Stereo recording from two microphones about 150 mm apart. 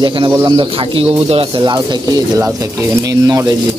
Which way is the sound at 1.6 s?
25° right (ahead or behind).